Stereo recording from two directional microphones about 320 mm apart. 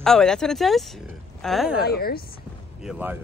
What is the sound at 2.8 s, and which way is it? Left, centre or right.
Speech, centre.